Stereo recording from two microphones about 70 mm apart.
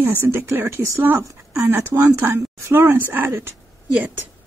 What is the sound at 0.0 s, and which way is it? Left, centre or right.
A woman's voice, right.